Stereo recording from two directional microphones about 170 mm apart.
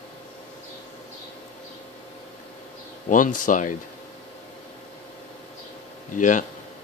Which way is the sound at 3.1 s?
50° left (ahead or behind).